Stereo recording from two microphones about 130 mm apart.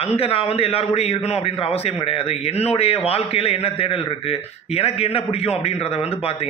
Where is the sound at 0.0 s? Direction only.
50° left (ahead or behind).